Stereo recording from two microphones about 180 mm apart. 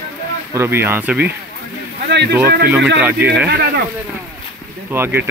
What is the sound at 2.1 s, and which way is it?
Speech, 75° right (ahead or behind).